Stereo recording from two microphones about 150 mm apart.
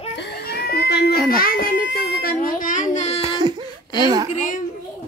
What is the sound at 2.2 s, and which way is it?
Child singing, 70° left (ahead or behind).